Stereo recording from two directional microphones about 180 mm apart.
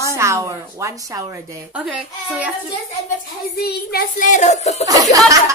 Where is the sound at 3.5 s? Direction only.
60° left (ahead or behind); by 4.8 s 40° left (ahead or behind).